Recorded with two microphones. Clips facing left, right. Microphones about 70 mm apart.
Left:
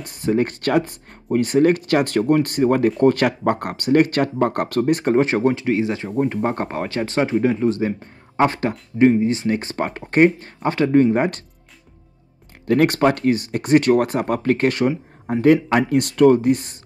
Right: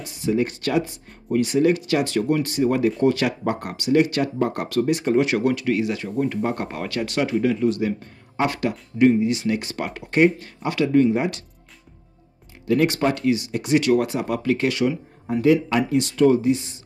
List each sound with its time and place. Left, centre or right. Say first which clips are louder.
0.0 s speech: left 2 dB; left
12.6 s speech: left 4 dB; left